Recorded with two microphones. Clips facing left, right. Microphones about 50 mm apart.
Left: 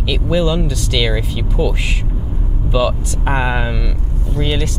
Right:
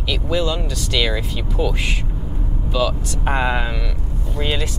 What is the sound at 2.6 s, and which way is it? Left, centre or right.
Speech, centre.